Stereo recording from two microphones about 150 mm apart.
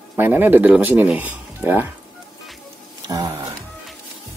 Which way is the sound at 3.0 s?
25° right (ahead or behind).